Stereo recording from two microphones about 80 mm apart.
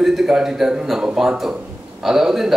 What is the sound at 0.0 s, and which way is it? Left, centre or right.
A man's voice, centre.